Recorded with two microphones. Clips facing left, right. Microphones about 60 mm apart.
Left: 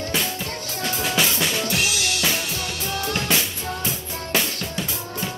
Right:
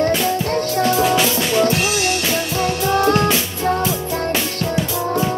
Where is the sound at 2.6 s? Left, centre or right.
Right.